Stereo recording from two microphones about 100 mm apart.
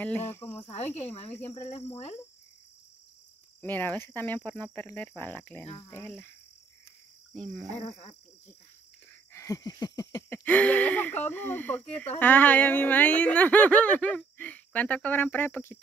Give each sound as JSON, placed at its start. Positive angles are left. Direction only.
{"t": 0.0, "sound": "speech", "side_deg": 20}
{"t": 0.6, "sound": "cricket", "side_deg": 90}
{"t": 3.6, "sound": "speech", "side_deg": 20}
{"t": 7.3, "sound": "cricket", "side_deg": 0}
{"t": 7.7, "sound": "frog", "side_deg": 85}
{"t": 9.3, "sound": "a sound", "side_deg": 35}
{"t": 10.3, "sound": "speech", "side_deg": 15}